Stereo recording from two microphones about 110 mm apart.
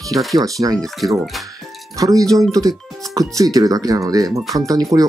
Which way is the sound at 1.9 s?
30° right (ahead or behind).